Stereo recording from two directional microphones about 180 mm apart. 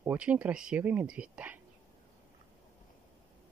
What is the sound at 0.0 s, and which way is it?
Speech, 10° right (ahead or behind).